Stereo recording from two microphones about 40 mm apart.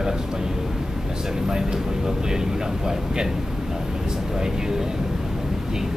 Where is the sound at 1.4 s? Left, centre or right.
Centre.